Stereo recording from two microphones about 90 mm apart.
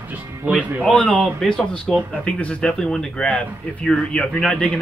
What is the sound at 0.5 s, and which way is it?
Speech, 15° right (ahead or behind).